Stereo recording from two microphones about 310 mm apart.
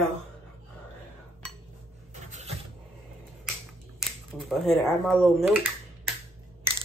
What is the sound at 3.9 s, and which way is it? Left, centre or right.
Speech, centre.